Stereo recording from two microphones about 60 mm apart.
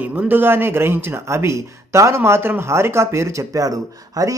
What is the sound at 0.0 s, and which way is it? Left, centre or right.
Speech, right.